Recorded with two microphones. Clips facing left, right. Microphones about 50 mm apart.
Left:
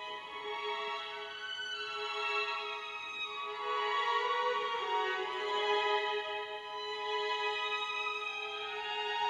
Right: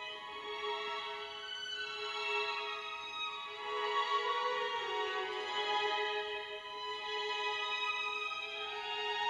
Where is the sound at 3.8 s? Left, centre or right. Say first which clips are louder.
Left 1 dB; left.